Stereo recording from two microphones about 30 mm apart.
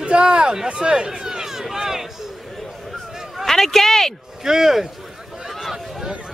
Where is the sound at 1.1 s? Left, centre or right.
Centre.